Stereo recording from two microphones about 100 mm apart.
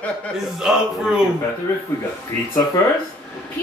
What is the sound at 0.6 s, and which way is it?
Speech, 5° right (ahead or behind).